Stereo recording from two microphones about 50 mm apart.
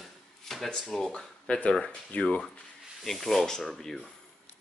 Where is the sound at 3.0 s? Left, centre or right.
Centre.